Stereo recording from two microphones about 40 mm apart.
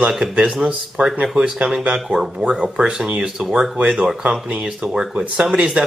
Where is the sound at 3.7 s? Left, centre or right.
Right.